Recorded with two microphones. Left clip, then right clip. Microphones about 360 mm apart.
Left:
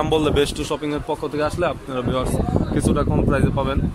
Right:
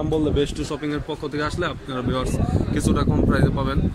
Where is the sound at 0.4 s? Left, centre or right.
Centre.